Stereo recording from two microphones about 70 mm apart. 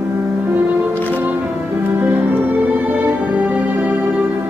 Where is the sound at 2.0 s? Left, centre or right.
Right.